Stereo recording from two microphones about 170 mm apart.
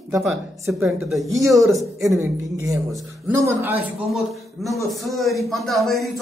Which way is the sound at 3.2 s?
15° right (ahead or behind).